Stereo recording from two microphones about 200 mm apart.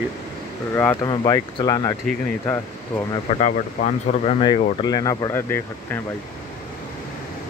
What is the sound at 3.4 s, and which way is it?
Speech, 35° left (ahead or behind).